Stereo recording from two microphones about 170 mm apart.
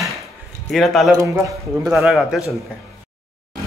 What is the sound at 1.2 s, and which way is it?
Speech, 20° right (ahead or behind).